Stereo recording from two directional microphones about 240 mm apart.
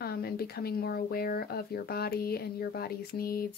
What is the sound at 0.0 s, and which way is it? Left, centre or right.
Speech, left.